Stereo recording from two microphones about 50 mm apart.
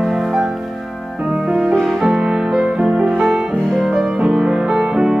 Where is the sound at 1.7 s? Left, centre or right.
Centre.